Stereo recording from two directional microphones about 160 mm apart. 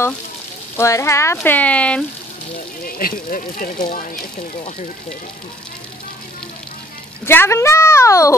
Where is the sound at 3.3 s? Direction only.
60° left (ahead or behind).